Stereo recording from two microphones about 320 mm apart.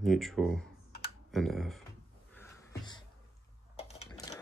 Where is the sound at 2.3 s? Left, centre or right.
Centre.